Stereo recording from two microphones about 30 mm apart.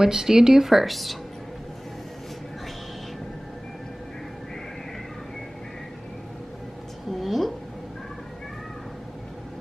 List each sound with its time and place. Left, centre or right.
0.0 s speech: centre
0.7 s speech: centre
7.1 s a sound: centre